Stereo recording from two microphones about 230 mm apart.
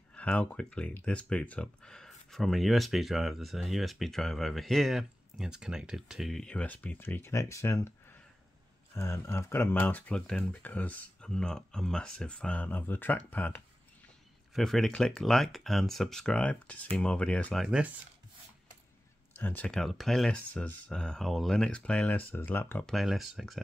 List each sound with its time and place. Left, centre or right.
0.1 s speech: centre
19.3 s speech: centre